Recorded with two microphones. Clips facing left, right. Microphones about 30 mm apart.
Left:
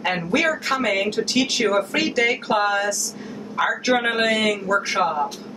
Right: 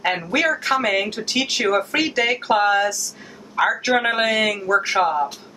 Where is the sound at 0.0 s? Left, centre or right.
Centre.